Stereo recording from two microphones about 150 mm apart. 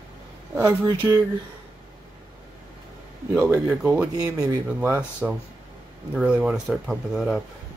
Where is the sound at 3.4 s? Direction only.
5° right (ahead or behind).